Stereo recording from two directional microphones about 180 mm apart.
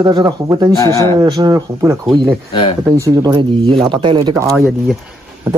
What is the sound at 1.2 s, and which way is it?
Speech, 20° right (ahead or behind).